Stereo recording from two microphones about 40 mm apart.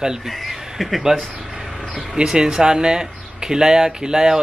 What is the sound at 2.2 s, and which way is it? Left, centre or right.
Speech, centre.